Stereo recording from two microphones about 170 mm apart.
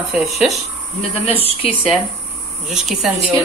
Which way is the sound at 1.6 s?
35° left (ahead or behind).